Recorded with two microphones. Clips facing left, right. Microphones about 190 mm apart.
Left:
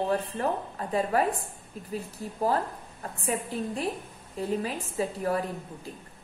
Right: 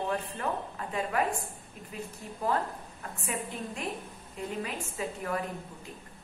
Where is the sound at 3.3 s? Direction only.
35° left (ahead or behind).